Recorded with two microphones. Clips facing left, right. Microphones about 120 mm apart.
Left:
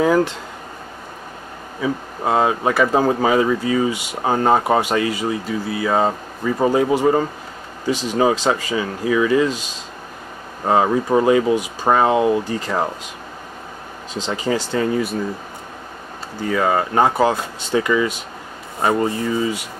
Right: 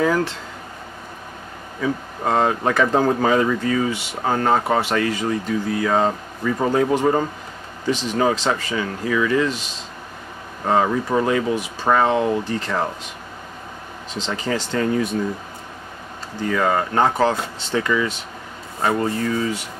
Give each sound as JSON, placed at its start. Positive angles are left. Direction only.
{"t": 0.0, "sound": "speech", "side_deg": 20}
{"t": 1.8, "sound": "speech", "side_deg": 10}
{"t": 10.6, "sound": "speech", "side_deg": 15}
{"t": 14.1, "sound": "speech", "side_deg": 10}
{"t": 16.5, "sound": "speech", "side_deg": 10}